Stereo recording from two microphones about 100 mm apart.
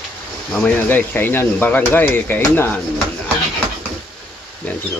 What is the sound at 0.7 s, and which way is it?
Speech, 20° left (ahead or behind).